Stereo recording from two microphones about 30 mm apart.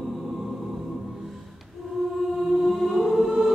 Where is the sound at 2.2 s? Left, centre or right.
Centre.